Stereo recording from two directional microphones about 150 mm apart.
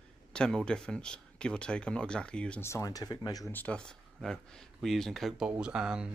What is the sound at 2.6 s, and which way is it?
Speech, 20° left (ahead or behind).